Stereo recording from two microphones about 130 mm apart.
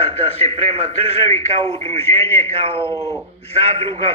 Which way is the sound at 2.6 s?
50° right (ahead or behind).